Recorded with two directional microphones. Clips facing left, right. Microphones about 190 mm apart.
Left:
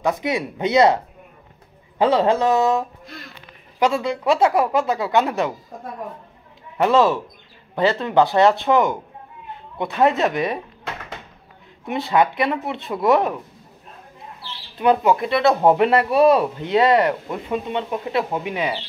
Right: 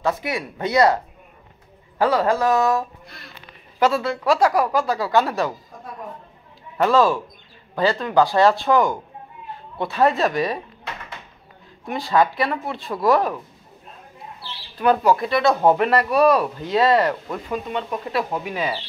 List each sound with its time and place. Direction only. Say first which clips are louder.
0.0 s speech: left 2 dB; 20° left (ahead or behind)
2.0 s speech: left 2 dB; 25° left (ahead or behind)
3.8 s speech: even; 15° left (ahead or behind)
6.8 s speech: left 1 dB; 20° left (ahead or behind)
9.9 s speech: left 1 dB; 20° left (ahead or behind)
11.8 s speech: left 1 dB; 20° left (ahead or behind)
14.8 s speech: left 1 dB; 20° left (ahead or behind)